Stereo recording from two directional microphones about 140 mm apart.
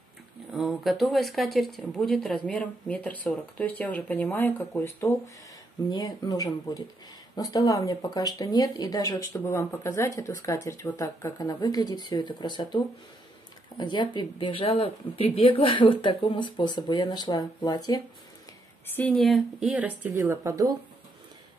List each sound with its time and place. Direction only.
0.5 s speech: centre (ahead or behind); by 5.1 s 15° left (ahead or behind)
5.9 s speech: 30° left (ahead or behind)
18.9 s speech: 5° left (ahead or behind)
19.7 s speech: 10° right (ahead or behind)